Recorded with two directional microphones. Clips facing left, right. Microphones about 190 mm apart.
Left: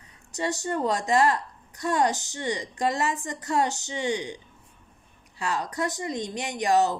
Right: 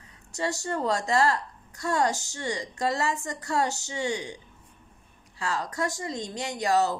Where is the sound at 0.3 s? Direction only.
20° left (ahead or behind).